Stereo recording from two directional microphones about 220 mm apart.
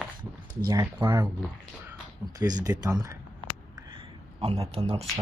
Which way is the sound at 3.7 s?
20° right (ahead or behind).